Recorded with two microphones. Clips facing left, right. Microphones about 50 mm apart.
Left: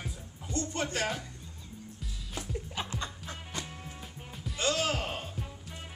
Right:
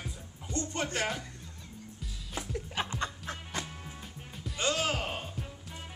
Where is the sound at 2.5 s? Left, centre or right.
Right.